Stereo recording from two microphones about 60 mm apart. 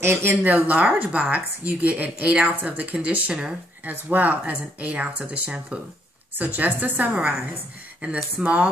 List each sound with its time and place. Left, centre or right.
0.0 s speech: right
0.4 s speech: right